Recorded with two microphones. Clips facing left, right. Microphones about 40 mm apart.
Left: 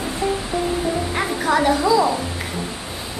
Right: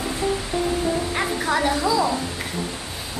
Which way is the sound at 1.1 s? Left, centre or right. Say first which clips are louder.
Left 3 dB; centre.